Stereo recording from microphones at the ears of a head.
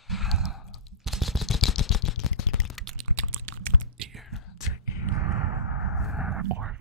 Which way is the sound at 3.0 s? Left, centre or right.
Right.